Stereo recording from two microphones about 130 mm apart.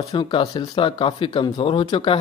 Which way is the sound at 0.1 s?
35° left (ahead or behind).